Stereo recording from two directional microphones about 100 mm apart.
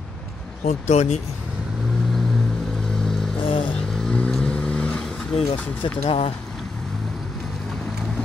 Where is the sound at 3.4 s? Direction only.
65° left (ahead or behind).